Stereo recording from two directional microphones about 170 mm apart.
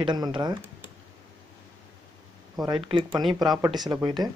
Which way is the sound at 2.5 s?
25° right (ahead or behind).